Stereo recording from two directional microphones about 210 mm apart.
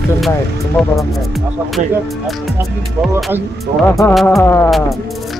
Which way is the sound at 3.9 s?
10° left (ahead or behind).